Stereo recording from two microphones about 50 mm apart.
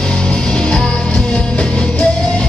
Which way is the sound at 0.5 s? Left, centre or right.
Centre.